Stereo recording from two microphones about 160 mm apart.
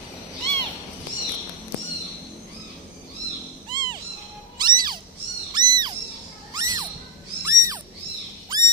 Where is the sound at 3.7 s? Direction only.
30° right (ahead or behind).